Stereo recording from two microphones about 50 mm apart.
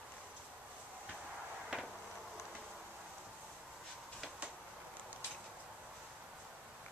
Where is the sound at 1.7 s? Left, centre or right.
Right.